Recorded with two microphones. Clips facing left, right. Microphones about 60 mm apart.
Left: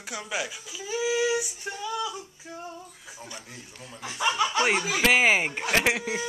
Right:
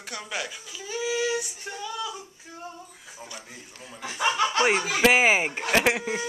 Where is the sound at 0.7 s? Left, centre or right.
Centre.